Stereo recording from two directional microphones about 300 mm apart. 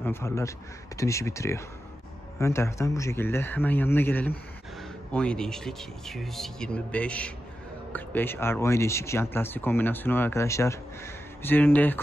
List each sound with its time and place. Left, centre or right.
0.0 s speech: centre